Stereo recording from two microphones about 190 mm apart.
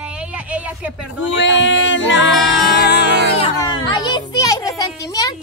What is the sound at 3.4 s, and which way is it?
A child's voice, 25° left (ahead or behind).